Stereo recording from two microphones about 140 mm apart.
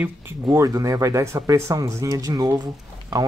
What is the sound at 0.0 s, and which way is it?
Speech, 20° right (ahead or behind).